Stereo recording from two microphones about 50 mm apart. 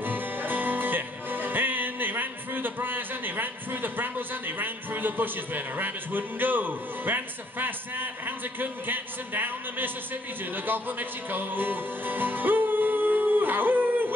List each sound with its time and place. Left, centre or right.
0.0 s music: right